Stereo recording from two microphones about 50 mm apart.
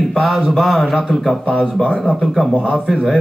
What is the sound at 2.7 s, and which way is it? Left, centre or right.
Speech, centre.